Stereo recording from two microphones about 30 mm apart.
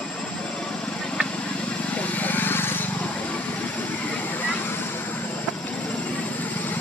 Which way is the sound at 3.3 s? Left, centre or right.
Left.